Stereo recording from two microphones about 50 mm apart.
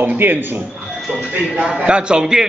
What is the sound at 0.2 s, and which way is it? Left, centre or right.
Speech, right.